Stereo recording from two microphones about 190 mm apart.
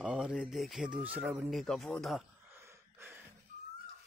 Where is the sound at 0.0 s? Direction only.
5° right (ahead or behind).